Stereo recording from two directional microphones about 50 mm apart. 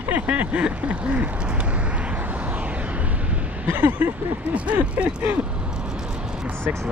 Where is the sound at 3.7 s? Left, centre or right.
Right.